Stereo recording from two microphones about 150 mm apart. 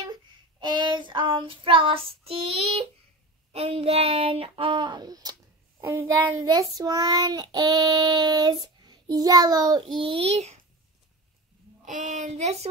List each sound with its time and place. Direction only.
0.0 s child singing: 30° right (ahead or behind)
3.5 s speech: 40° right (ahead or behind); by 5.3 s 25° right (ahead or behind)
5.8 s child singing: 20° right (ahead or behind); by 10.5 s 45° right (ahead or behind)
11.8 s child singing: 55° right (ahead or behind)